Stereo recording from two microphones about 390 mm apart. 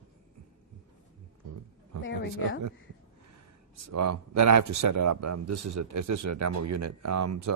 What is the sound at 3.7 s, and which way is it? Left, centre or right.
Speech, right.